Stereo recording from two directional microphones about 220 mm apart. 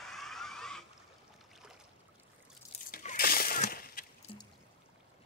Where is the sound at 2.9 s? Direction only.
40° left (ahead or behind).